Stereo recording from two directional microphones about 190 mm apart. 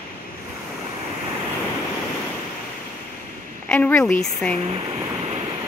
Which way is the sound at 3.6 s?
10° left (ahead or behind).